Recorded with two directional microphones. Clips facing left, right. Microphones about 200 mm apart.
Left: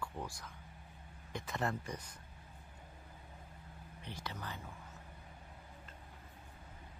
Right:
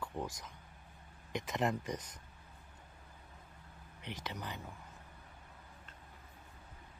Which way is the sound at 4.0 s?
20° right (ahead or behind).